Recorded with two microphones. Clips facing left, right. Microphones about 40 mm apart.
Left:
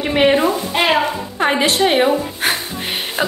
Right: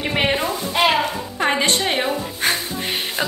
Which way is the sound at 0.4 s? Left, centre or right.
Centre.